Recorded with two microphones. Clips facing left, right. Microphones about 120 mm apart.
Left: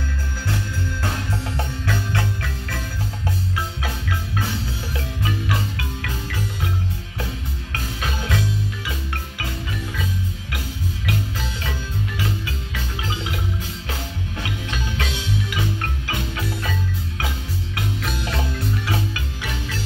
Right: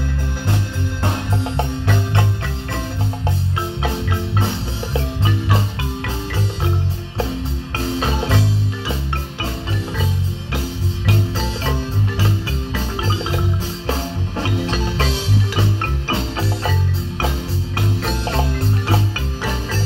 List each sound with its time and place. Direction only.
1.0 s music: 20° right (ahead or behind)
3.8 s music: 25° right (ahead or behind)
7.7 s music: 30° right (ahead or behind)
11.1 s music: 30° right (ahead or behind)
17.7 s music: 30° right (ahead or behind)